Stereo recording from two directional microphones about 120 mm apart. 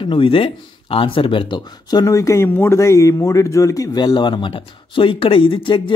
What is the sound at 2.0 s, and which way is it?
A man's voice, 25° left (ahead or behind).